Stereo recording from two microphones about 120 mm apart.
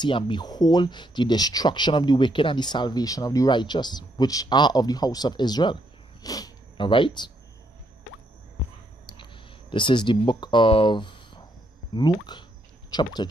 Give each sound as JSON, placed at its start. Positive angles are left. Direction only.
{"t": 0.0, "sound": "speech", "side_deg": 40}
{"t": 6.8, "sound": "speech", "side_deg": 45}
{"t": 9.1, "sound": "a sound", "side_deg": 40}
{"t": 11.9, "sound": "speech", "side_deg": 40}